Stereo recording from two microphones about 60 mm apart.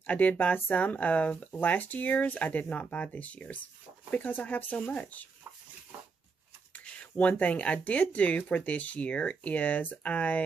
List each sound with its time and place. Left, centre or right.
0.0 s speech: left
6.7 s speech: left